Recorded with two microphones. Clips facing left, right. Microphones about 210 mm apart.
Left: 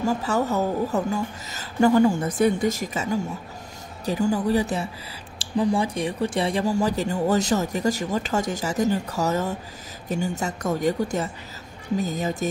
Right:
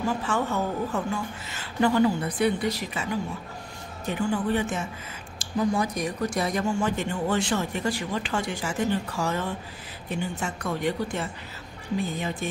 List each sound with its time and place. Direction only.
0.0 s a woman's voice: 40° left (ahead or behind)